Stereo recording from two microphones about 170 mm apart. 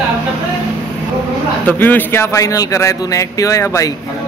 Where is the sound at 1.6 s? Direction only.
10° left (ahead or behind).